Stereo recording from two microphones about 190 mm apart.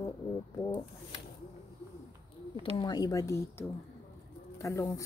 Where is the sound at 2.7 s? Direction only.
20° left (ahead or behind).